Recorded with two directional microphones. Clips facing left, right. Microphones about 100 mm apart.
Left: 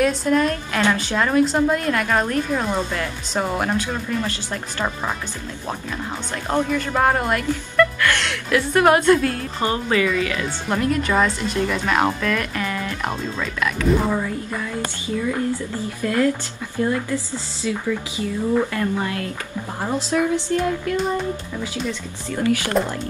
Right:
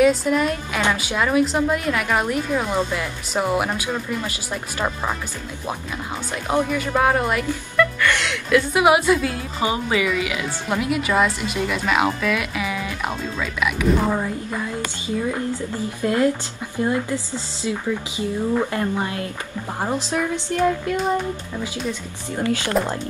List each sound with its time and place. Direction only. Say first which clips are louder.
0.0 s a woman's voice: right 1 dB; 5° right (ahead or behind)
6.5 s a woman's voice: even; 5° right (ahead or behind)
14.2 s speech: even; 20° right (ahead or behind)
22.8 s speech: right 1 dB; centre (ahead or behind)